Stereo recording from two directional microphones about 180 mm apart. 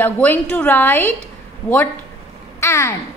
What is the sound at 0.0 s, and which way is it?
A woman's voice, 10° left (ahead or behind).